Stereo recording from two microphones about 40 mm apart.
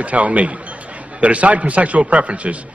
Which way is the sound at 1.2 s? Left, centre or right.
Right.